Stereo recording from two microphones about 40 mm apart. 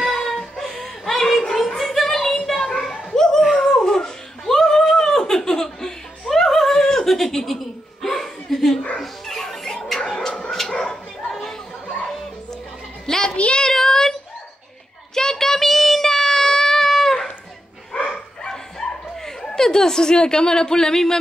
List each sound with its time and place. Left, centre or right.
0.0 s music: centre
0.7 s a sound: centre
9.0 s dog: centre
13.0 s a sound: centre
13.4 s child singing: left
13.7 s child singing: centre
15.1 s child singing: centre
19.2 s chuckle: centre